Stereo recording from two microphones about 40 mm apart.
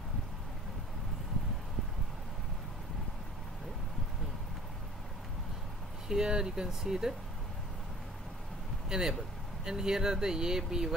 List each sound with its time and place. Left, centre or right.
6.0 s speech: centre
8.8 s speech: centre